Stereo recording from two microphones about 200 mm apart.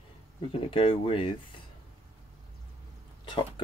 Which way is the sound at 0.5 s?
25° left (ahead or behind).